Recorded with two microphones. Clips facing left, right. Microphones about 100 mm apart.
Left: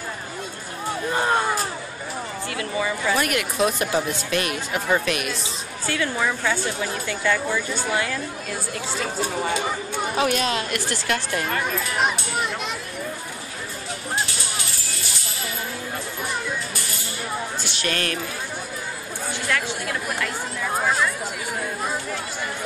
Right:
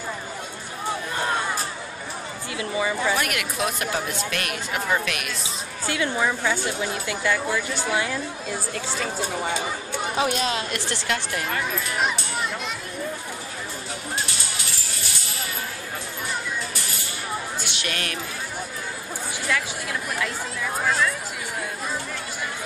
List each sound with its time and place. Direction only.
2.5 s speech: 15° right (ahead or behind)
3.2 s speech: centre (ahead or behind)
5.9 s speech: 15° right (ahead or behind)
8.7 s speech: 5° left (ahead or behind)
10.7 s speech: 25° right (ahead or behind)
17.6 s a sound: 15° right (ahead or behind)
19.5 s speech: 5° right (ahead or behind)